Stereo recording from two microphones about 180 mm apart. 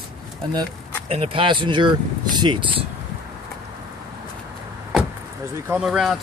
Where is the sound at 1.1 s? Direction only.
30° right (ahead or behind).